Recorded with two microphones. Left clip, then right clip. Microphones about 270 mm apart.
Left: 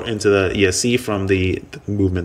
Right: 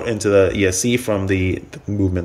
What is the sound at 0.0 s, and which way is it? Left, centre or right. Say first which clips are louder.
Speech: right 2 dB; centre.